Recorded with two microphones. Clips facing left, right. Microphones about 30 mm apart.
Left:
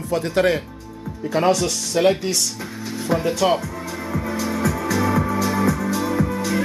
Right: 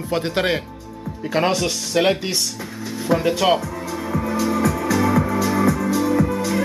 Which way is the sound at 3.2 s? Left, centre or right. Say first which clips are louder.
Right 1 dB; centre.